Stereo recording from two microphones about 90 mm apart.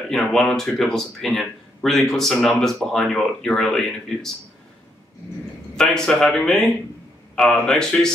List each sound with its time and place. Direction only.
0.1 s speech: 5° left (ahead or behind)
5.8 s speech: 5° left (ahead or behind)